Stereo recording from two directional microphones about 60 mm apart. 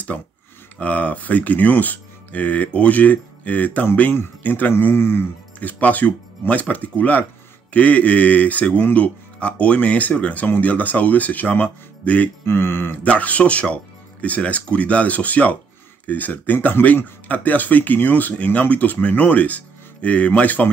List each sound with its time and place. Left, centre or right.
0.1 s speech: centre; by 5.3 s left
5.6 s speech: left
12.4 s speech: left
12.9 s speech: left